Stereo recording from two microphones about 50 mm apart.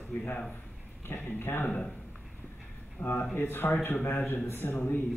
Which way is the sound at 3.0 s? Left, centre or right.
Left.